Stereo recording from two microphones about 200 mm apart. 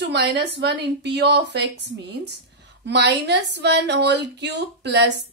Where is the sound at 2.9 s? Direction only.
55° right (ahead or behind).